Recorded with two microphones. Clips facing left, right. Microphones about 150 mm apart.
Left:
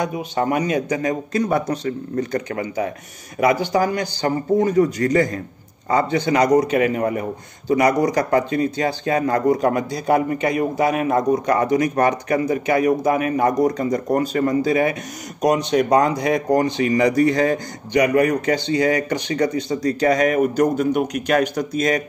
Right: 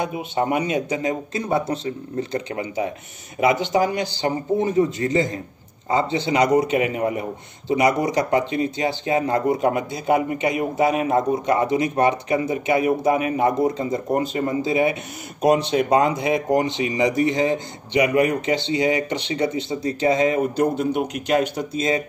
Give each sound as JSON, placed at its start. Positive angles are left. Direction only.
{"t": 0.0, "sound": "a man's voice", "side_deg": -20}